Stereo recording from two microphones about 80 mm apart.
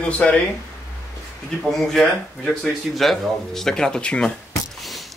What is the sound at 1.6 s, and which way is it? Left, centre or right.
Speech, centre.